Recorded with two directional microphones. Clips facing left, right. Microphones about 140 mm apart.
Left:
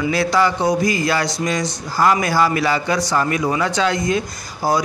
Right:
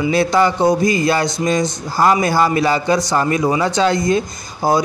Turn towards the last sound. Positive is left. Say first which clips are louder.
# right 3 dB
turn(degrees=-20)  # may be behind; listen again after turning